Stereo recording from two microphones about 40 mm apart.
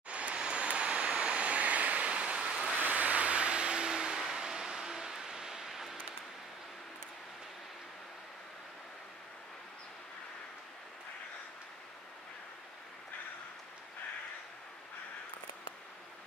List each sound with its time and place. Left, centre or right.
0.1 s vehicle: right
2.8 s vehicle: right; by 5.9 s centre